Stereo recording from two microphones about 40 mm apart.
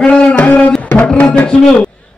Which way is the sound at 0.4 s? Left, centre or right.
Left.